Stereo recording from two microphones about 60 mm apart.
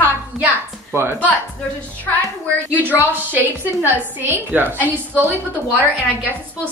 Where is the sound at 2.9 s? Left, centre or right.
Right.